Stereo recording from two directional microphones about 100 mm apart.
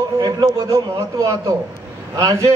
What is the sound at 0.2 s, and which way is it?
A man's voice, 40° right (ahead or behind).